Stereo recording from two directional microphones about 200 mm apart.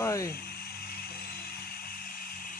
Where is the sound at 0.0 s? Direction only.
15° left (ahead or behind).